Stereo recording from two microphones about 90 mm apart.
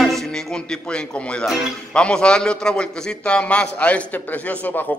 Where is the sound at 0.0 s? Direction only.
5° left (ahead or behind).